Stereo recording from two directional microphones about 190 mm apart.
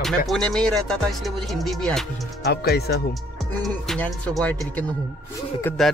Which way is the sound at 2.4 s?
55° left (ahead or behind).